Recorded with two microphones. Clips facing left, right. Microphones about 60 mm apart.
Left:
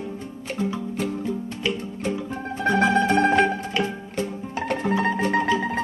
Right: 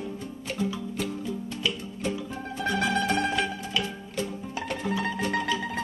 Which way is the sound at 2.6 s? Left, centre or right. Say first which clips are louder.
Left 7 dB; left.